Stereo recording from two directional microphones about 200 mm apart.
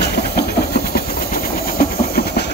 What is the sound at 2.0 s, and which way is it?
Steam, 50° left (ahead or behind).